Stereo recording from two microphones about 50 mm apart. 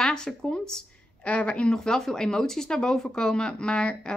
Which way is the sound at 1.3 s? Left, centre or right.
Left.